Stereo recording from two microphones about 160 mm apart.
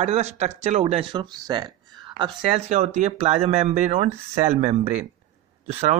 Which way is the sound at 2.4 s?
45° right (ahead or behind).